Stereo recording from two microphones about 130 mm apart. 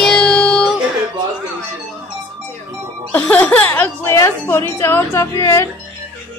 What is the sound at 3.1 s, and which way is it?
Speech, 10° left (ahead or behind).